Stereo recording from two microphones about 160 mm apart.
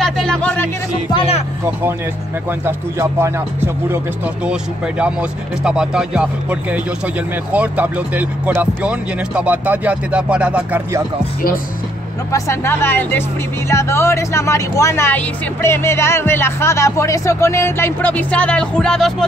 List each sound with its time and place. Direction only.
0.0 s a sound: 5° left (ahead or behind)
1.1 s music: 35° left (ahead or behind)
2.6 s speech: 15° right (ahead or behind)
12.3 s speech: 20° left (ahead or behind); by 19.2 s centre (ahead or behind)